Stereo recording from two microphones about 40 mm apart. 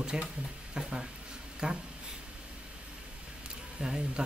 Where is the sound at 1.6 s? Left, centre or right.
Centre.